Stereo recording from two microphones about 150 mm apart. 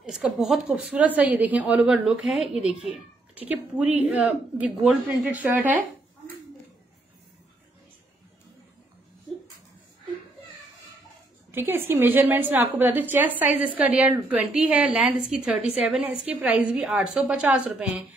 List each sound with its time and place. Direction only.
0.1 s a woman's voice: 5° right (ahead or behind)
11.5 s a woman's voice: 15° right (ahead or behind)